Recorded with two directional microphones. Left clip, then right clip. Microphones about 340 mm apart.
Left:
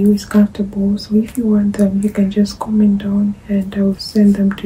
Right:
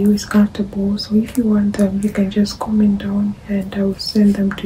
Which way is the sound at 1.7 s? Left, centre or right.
Centre.